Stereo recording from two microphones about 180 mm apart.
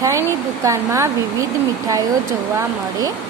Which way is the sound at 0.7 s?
15° right (ahead or behind).